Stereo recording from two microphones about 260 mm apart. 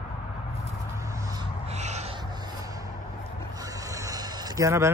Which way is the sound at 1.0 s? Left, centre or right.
Centre.